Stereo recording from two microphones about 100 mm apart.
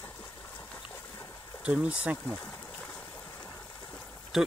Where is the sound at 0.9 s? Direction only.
20° left (ahead or behind).